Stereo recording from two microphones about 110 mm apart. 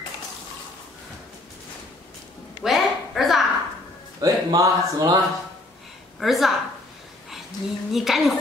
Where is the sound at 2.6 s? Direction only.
Centre (ahead or behind).